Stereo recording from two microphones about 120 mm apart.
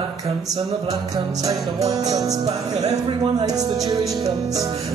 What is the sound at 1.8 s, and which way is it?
Music, 30° right (ahead or behind).